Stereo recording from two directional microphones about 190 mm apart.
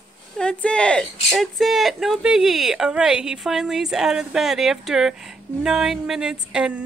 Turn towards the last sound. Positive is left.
turn(degrees=-5)  # may be behind; listen again after turning